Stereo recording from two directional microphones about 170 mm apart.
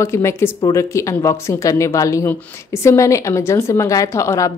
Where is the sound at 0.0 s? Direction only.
15° left (ahead or behind).